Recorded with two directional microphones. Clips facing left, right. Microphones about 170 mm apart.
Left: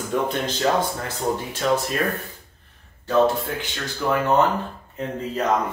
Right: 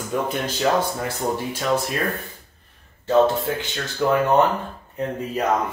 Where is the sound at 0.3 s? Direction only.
10° right (ahead or behind).